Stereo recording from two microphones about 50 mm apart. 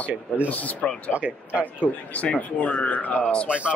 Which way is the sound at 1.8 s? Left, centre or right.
Left.